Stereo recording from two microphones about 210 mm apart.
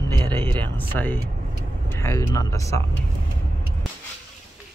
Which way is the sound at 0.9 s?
10° left (ahead or behind).